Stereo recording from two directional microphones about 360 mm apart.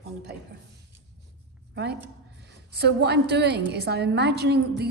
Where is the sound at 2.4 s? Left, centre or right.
Right.